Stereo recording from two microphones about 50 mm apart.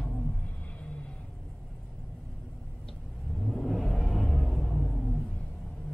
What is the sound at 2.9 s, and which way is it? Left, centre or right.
Vehicle, centre.